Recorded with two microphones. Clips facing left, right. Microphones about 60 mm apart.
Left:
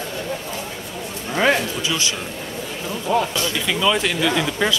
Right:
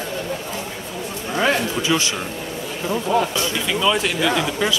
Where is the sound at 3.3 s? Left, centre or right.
Right.